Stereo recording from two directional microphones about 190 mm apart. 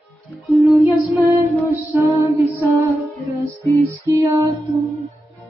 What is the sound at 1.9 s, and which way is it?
Music, 15° right (ahead or behind).